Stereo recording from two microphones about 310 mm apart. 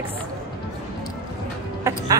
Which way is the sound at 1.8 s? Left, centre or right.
Centre.